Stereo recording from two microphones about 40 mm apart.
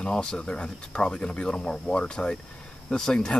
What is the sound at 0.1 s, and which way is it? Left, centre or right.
Speech, left.